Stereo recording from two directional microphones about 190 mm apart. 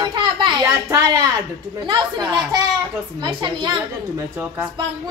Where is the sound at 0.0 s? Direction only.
25° right (ahead or behind).